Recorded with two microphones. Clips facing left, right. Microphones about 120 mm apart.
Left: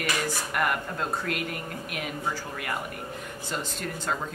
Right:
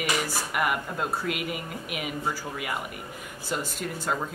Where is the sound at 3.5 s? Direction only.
5° right (ahead or behind).